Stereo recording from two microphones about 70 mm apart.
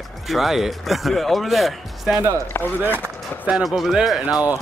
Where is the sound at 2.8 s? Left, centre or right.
Right.